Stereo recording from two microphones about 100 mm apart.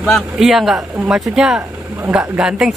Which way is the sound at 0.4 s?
5° right (ahead or behind).